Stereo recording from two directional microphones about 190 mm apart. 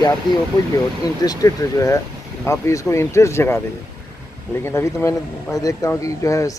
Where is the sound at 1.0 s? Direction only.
20° left (ahead or behind).